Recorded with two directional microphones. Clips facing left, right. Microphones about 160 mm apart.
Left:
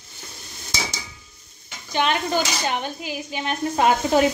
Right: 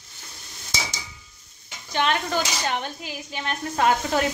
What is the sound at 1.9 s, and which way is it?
Speech, 5° left (ahead or behind).